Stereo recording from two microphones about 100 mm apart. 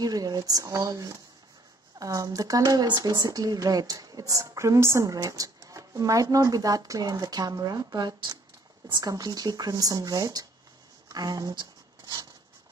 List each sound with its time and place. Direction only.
0.0 s speech: 40° right (ahead or behind)